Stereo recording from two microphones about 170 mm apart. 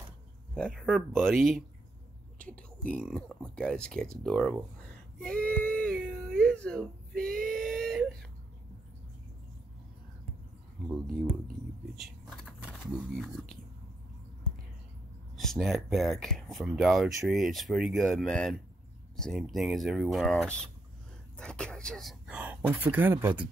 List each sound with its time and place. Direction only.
0.6 s speech: 5° left (ahead or behind)
2.3 s a sound: 10° left (ahead or behind)
2.9 s speech: 5° left (ahead or behind)
5.2 s whimper: 5° left (ahead or behind)
7.2 s a sound: 55° right (ahead or behind)
7.5 s speech: centre (ahead or behind)
10.9 s speech: centre (ahead or behind)
15.3 s speech: centre (ahead or behind)